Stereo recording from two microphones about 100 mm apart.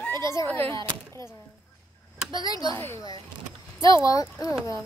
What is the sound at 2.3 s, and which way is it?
Speech, 40° left (ahead or behind).